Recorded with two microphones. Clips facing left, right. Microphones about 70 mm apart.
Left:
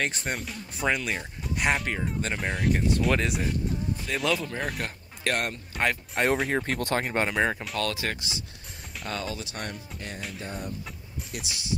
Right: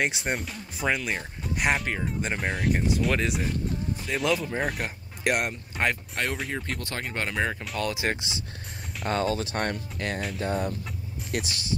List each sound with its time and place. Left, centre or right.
0.0 s speech: centre
6.5 s speech: left
7.2 s speech: centre
8.1 s speech: right
9.0 s speech: right
9.9 s music: right
10.4 s speech: right